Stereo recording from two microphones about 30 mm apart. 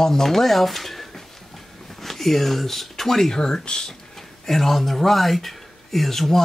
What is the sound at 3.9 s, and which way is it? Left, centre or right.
Speech, centre.